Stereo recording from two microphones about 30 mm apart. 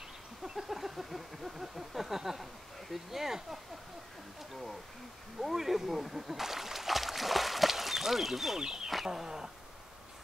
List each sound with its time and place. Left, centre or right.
0.4 s a sound: centre
2.9 s speech: centre
5.4 s speech: centre
8.5 s speech: right